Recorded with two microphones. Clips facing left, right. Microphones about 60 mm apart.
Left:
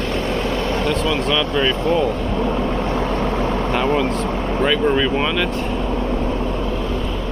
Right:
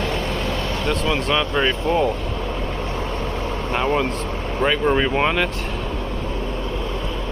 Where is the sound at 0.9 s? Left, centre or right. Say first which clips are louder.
Right 2 dB; right.